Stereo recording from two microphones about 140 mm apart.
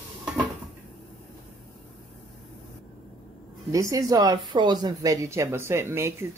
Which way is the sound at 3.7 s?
25° right (ahead or behind).